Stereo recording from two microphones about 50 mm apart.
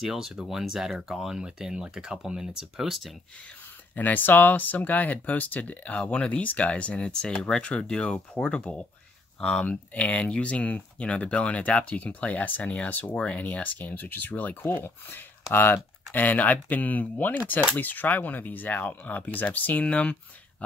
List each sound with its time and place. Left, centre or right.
0.0 s speech: centre
2.9 s speech: centre
3.9 s speech: left
14.6 s speech: left